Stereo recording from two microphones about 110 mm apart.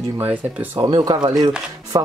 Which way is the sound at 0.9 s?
40° right (ahead or behind).